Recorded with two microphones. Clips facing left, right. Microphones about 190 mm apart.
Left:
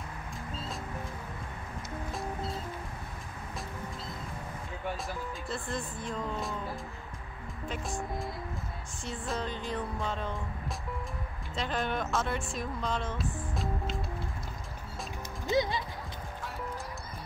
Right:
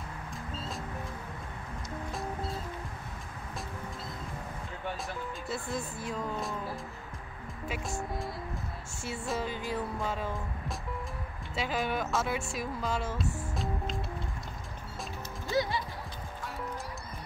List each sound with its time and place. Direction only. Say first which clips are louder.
4.8 s speech: left 1 dB; centre (ahead or behind)
9.0 s speech: right 1 dB; 5° right (ahead or behind)
11.5 s speech: right 1 dB; 5° right (ahead or behind)
15.4 s music: left 2 dB; 20° left (ahead or behind)